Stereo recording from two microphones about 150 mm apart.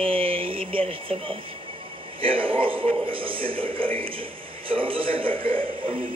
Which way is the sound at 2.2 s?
35° right (ahead or behind).